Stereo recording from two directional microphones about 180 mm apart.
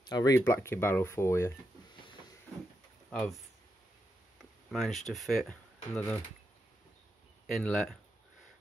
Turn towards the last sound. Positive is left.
turn(degrees=5)  # may be behind; listen again after turning